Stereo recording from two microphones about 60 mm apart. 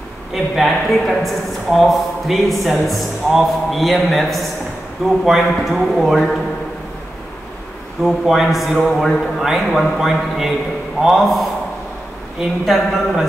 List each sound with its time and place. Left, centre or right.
0.3 s a woman's voice: centre
8.0 s a woman's voice: centre
8.8 s a man's voice: centre
9.9 s a woman's voice: centre